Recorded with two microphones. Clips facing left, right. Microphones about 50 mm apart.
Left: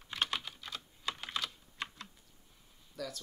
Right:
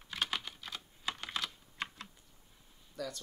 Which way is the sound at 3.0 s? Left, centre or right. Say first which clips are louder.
Right 1 dB; centre.